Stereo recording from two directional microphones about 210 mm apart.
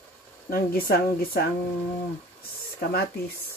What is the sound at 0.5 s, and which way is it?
Speech, 45° left (ahead or behind).